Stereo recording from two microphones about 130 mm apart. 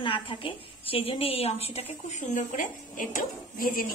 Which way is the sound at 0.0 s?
40° left (ahead or behind).